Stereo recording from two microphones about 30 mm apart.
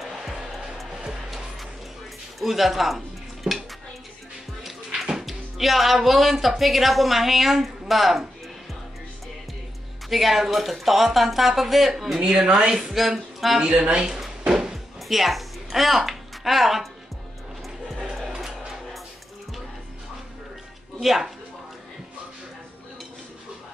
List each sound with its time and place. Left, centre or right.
0.2 s music: centre
2.4 s speech: centre
3.4 s dishes: right
5.2 s speech: centre
10.0 s speech: centre
12.4 s speech: right
12.9 s speech: centre
13.6 s speech: right
14.4 s music: right
15.0 s speech: centre